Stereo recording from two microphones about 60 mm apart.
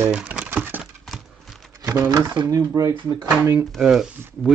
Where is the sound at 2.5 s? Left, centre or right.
Right.